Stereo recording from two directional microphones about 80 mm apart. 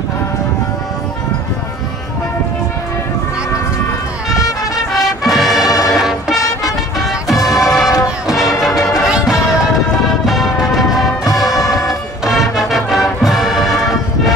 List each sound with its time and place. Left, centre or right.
4.9 s music: centre
5.6 s music: left
5.9 s music: centre
8.7 s music: left
9.0 s music: centre